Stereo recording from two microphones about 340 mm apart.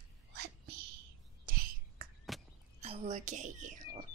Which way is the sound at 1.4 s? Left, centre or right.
Right.